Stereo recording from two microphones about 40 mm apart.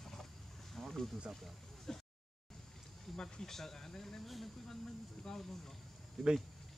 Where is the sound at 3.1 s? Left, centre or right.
Centre.